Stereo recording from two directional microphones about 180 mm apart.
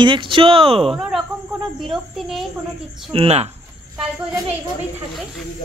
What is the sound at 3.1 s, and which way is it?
Speech, 35° right (ahead or behind).